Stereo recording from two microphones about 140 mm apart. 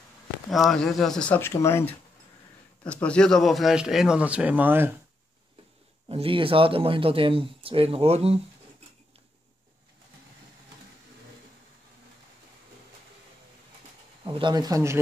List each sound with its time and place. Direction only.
0.5 s speech: centre (ahead or behind); by 4.9 s 15° right (ahead or behind)
6.0 s speech: 40° right (ahead or behind)
14.2 s speech: 30° right (ahead or behind)